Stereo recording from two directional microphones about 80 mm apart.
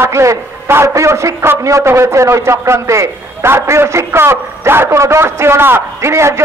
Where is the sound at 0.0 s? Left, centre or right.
Right.